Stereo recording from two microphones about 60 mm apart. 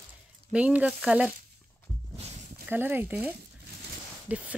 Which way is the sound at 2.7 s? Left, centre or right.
Right.